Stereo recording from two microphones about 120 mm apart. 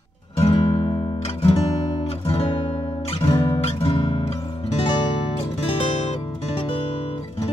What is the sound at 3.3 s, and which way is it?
Music, 35° left (ahead or behind).